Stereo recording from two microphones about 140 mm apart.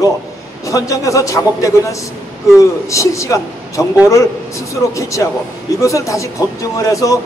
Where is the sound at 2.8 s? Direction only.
20° left (ahead or behind).